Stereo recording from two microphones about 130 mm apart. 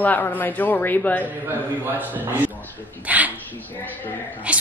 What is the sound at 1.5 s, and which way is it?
A man's voice, 15° right (ahead or behind).